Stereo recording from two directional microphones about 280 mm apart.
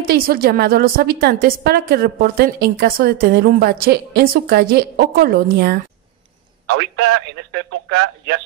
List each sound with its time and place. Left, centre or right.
0.0 s a woman's voice: right
7.5 s a woman's voice: right